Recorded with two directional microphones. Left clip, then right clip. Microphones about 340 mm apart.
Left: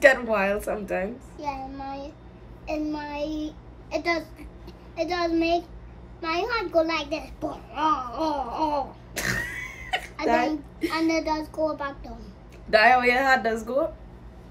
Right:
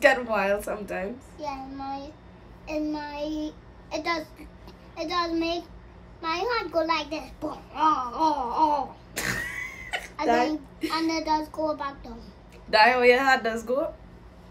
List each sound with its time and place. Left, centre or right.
0.0 s a child's voice: centre